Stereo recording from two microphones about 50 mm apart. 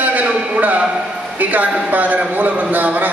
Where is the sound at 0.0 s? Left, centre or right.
Right.